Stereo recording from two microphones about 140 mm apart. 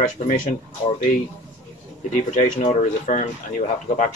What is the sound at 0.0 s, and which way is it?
Speech, 70° left (ahead or behind).